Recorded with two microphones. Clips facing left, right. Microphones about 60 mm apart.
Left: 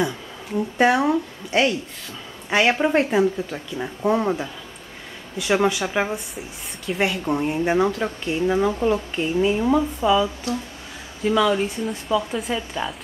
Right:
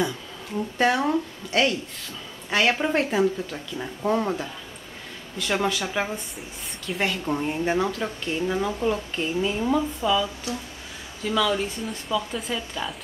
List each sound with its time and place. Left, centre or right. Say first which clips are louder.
0.0 s speech: left 2 dB; centre